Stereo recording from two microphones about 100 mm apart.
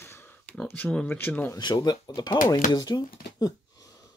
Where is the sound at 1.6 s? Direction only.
45° left (ahead or behind).